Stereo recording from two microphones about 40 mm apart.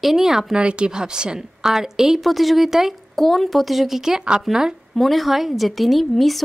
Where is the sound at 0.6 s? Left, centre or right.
Right; by 2.9 s centre.